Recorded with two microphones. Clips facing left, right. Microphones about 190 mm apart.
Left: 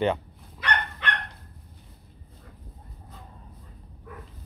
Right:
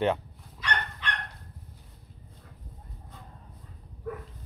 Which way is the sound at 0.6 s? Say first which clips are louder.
Left 4 dB; 60° left (ahead or behind).